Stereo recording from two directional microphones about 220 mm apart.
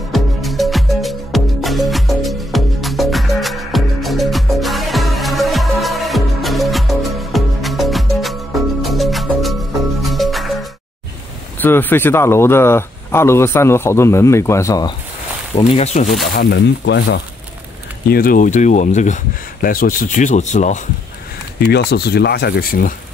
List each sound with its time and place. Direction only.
0.1 s music: centre (ahead or behind)
11.5 s speech: 10° left (ahead or behind)
15.5 s speech: 30° left (ahead or behind)
16.1 s speech: centre (ahead or behind)
16.3 s speech: 50° left (ahead or behind)
18.1 s speech: 40° left (ahead or behind)
21.5 s speech: 50° left (ahead or behind)